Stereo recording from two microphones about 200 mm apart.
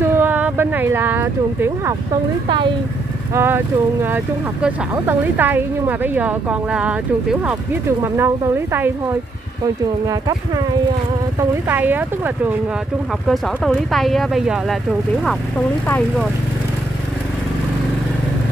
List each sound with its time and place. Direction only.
0.0 s speech: 10° right (ahead or behind)
3.3 s speech: 10° right (ahead or behind)
10.0 s speech: 15° right (ahead or behind)
11.7 s speech: 10° right (ahead or behind)
13.3 s speech: centre (ahead or behind)